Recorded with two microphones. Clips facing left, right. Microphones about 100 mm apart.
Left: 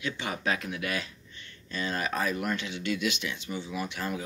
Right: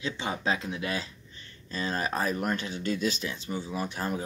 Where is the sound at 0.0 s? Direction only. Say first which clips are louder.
Right 1 dB; 30° right (ahead or behind).